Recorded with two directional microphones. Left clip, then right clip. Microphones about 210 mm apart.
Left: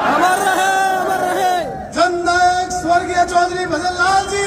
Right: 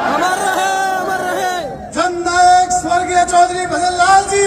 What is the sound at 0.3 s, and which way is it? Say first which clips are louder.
Chatter: left 1 dB; 5° left (ahead or behind).